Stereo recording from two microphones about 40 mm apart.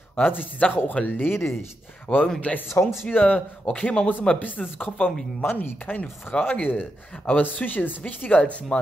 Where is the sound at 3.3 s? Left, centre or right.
Left.